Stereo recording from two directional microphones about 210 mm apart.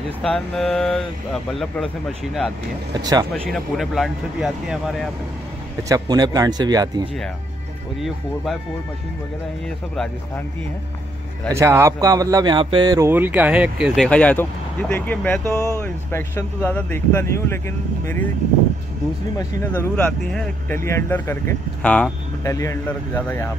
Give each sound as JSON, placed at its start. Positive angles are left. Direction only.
{"t": 0.2, "sound": "speech", "side_deg": 5}
{"t": 2.9, "sound": "speech", "side_deg": -20}
{"t": 3.4, "sound": "speech", "side_deg": 0}
{"t": 5.9, "sound": "speech", "side_deg": -20}
{"t": 11.5, "sound": "speech", "side_deg": -15}
{"t": 19.3, "sound": "speech", "side_deg": 10}